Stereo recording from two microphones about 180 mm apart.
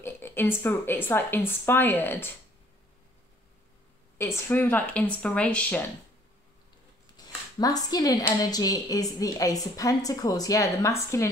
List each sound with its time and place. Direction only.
0.0 s a woman's voice: 10° left (ahead or behind)
4.2 s a woman's voice: 10° left (ahead or behind)
7.2 s a woman's voice: 20° left (ahead or behind)